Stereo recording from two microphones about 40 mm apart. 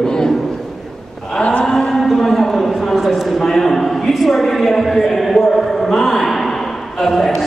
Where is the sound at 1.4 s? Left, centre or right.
Left.